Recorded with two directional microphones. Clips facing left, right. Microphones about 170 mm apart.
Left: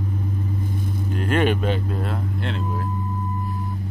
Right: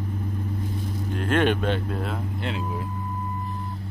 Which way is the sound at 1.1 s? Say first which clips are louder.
Left 1 dB; 5° left (ahead or behind).